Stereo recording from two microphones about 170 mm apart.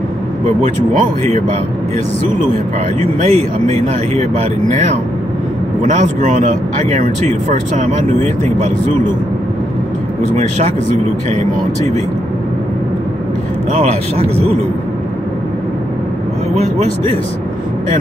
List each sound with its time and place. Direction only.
0.6 s speech: 45° right (ahead or behind)
3.0 s speech: 40° right (ahead or behind)
11.2 s speech: 40° right (ahead or behind)
13.7 s speech: 40° right (ahead or behind)